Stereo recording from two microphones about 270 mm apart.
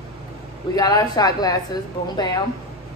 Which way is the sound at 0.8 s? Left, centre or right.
Centre.